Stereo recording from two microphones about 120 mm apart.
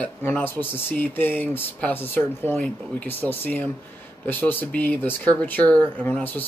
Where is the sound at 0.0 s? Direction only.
15° left (ahead or behind).